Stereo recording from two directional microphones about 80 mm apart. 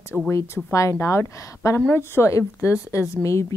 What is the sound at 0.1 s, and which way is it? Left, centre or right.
Speech, centre.